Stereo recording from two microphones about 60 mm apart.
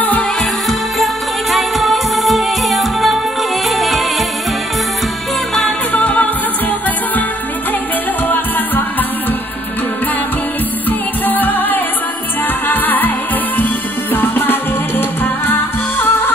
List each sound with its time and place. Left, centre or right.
0.7 s music: centre
5.9 s music: left
8.3 s music: left
10.9 s music: left
14.1 s music: left